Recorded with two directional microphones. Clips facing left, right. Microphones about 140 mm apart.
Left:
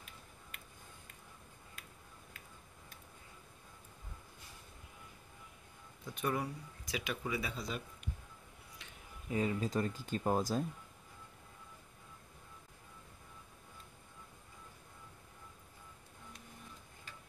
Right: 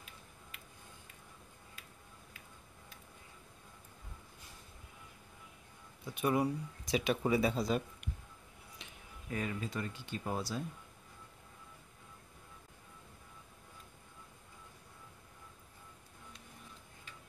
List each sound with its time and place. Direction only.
6.0 s speech: 10° right (ahead or behind); by 7.8 s 35° right (ahead or behind)
9.3 s speech: 20° left (ahead or behind)
9.6 s speech: 35° left (ahead or behind)